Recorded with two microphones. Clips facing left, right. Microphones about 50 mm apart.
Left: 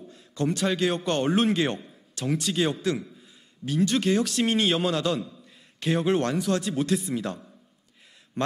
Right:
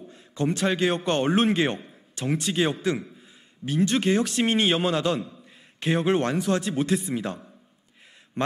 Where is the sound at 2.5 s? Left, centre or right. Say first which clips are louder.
Right 2 dB; right.